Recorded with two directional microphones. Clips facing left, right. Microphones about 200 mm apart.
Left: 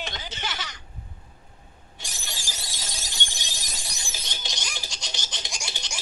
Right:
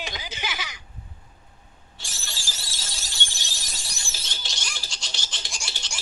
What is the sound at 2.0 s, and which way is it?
Shatter, 20° left (ahead or behind).